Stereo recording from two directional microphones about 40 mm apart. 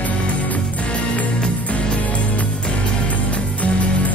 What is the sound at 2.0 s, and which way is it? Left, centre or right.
Music, left.